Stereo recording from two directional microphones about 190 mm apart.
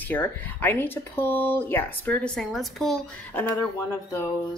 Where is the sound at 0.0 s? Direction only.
10° left (ahead or behind).